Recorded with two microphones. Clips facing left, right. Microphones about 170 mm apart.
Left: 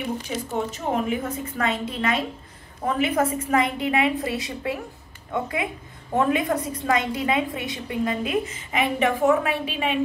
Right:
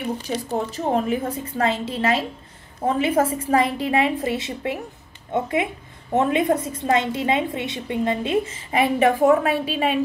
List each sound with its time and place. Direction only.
0.3 s a woman's voice: 35° right (ahead or behind)